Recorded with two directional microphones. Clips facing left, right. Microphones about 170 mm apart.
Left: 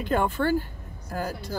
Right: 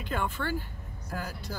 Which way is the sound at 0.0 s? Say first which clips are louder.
Left 8 dB; 40° left (ahead or behind).